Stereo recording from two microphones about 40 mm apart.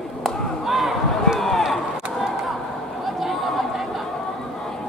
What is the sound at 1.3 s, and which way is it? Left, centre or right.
Chop, centre.